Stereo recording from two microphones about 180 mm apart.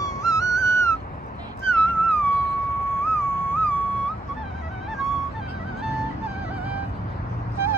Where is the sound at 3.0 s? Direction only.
10° left (ahead or behind).